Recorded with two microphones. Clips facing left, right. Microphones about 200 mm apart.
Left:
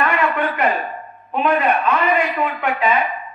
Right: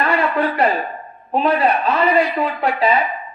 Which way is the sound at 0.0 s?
35° right (ahead or behind).